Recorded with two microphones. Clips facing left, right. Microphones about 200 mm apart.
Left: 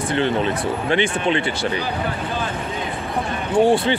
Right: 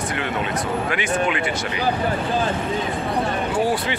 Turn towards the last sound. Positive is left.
turn(degrees=25)  # may be behind; listen again after turning